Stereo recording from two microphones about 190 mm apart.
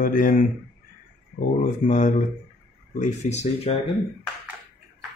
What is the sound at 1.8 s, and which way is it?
Speech, 40° left (ahead or behind).